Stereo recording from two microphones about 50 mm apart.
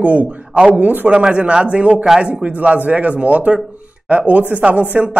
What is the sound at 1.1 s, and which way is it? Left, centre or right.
Speech, centre.